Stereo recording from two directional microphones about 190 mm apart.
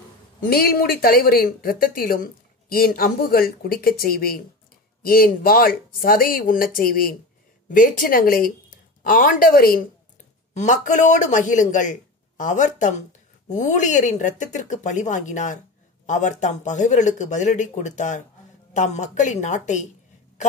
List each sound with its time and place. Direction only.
0.5 s a woman's voice: 55° left (ahead or behind)
10.5 s speech: 40° left (ahead or behind)